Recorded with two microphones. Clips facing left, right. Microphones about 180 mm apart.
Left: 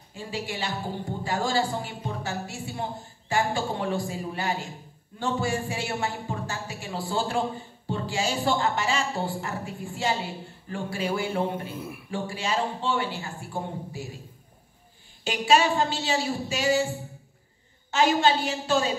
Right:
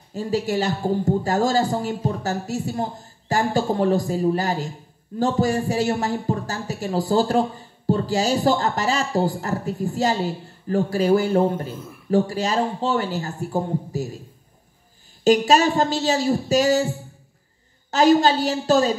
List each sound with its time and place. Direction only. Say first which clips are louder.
0.1 s a man's voice: right 11 dB; 40° right (ahead or behind)
15.2 s a man's voice: right 6 dB; 40° right (ahead or behind)
17.9 s a man's voice: right 6 dB; 40° right (ahead or behind)